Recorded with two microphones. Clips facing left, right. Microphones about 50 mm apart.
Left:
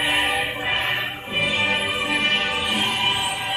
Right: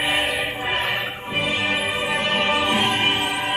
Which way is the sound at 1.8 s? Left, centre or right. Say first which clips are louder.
Right 1 dB; right.